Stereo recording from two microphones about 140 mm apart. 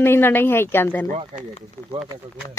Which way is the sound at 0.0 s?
15° left (ahead or behind).